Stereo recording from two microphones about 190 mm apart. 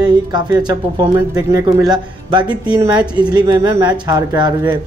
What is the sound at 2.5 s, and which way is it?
Speech, 5° right (ahead or behind).